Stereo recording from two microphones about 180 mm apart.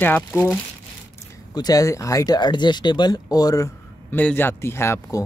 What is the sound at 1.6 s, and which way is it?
Speech, 20° left (ahead or behind).